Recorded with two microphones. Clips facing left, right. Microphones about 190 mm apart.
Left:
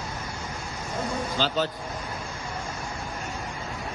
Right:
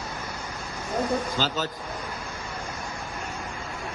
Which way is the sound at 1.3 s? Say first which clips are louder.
Left 2 dB; 45° right (ahead or behind).